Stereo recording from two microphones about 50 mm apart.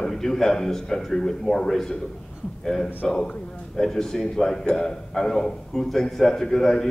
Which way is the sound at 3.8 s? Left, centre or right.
Centre.